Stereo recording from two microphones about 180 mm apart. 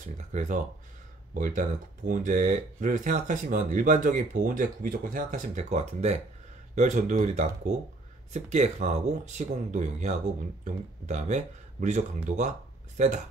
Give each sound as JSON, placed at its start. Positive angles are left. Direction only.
{"t": 0.3, "sound": "speech", "side_deg": -40}